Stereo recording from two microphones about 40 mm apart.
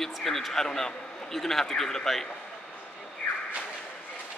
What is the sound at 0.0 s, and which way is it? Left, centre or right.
A man's voice, centre.